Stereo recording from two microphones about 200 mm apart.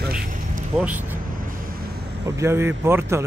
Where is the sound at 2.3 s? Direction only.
10° right (ahead or behind).